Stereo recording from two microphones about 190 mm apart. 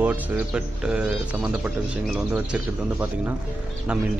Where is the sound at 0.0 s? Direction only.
5° right (ahead or behind).